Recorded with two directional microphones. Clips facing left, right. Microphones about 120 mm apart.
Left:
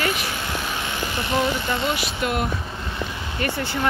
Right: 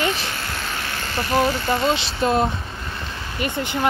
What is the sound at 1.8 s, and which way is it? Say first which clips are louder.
Speech: right 4 dB; 25° right (ahead or behind).